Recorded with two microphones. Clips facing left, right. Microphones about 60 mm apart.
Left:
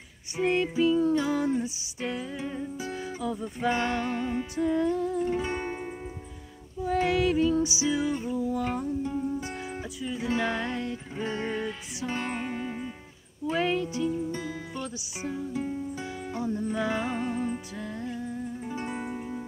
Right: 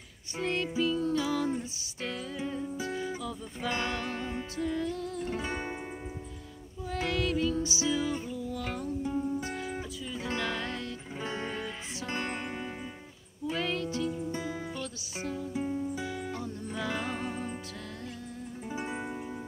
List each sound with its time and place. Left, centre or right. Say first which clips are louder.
0.4 s music: left 6 dB; centre
4.6 s music: left 7 dB; centre
5.4 s music: left 4 dB; centre
6.9 s female singing: left 6 dB; centre
7.6 s music: left 3 dB; centre
9.0 s music: left 1 dB; centre
9.4 s music: even; centre
11.1 s music: left 4 dB; centre
11.4 s music: left 5 dB; centre
13.6 s music: left 5 dB; centre
14.3 s music: left 1 dB; centre
14.8 s music: left 2 dB; centre
15.5 s music: even; centre
18.7 s music: right 1 dB; centre